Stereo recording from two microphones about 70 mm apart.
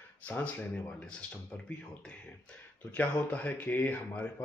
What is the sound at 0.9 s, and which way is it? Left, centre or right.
Speech, centre.